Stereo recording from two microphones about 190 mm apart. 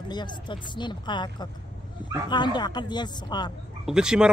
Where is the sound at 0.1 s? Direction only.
25° left (ahead or behind).